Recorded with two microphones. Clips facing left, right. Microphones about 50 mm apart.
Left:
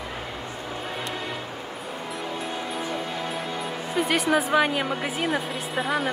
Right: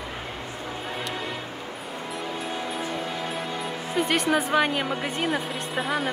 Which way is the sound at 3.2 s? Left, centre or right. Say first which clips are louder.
Even; centre.